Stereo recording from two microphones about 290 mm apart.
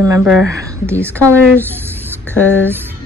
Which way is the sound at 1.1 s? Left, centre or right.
Centre.